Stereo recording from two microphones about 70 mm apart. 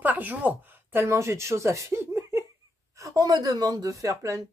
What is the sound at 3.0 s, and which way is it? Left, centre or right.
Speech, right.